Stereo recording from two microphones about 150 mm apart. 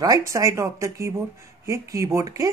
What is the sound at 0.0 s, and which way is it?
Speech, 20° right (ahead or behind).